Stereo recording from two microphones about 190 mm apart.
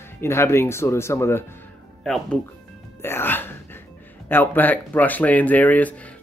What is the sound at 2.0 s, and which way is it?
Speech, centre (ahead or behind).